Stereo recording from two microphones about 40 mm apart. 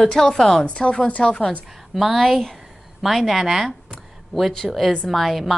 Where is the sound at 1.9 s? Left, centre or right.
Centre.